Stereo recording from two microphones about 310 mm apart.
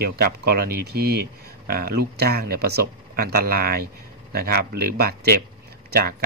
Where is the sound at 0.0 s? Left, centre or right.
Right.